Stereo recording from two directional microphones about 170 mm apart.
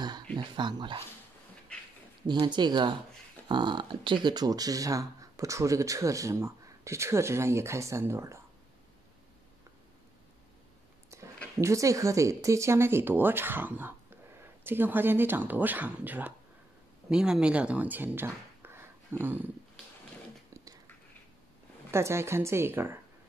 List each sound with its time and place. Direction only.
0.4 s speech: 25° right (ahead or behind)
2.2 s speech: 25° right (ahead or behind)
11.1 s a sound: 15° right (ahead or behind)
11.5 s speech: 20° right (ahead or behind)
21.9 s speech: 15° right (ahead or behind)